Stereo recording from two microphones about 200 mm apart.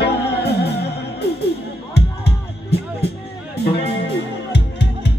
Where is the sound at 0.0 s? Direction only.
55° left (ahead or behind).